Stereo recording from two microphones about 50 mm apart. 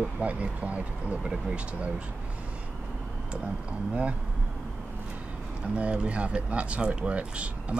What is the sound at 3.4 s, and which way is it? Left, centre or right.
Speech, right.